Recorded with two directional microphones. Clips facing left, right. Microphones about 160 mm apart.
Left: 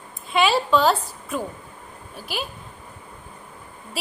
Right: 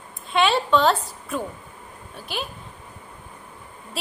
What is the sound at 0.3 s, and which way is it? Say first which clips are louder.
A woman's voice: even; 5° left (ahead or behind).